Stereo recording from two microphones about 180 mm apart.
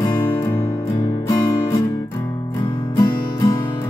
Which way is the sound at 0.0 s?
20° left (ahead or behind).